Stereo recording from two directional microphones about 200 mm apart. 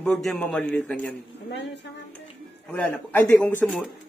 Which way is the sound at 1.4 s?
60° left (ahead or behind).